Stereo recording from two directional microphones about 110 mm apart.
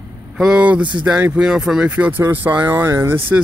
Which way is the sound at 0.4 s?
10° right (ahead or behind).